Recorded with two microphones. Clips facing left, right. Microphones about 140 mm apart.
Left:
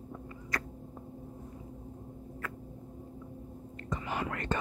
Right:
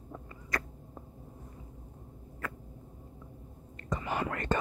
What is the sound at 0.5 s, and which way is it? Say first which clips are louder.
Cat: right 2 dB; 55° right (ahead or behind).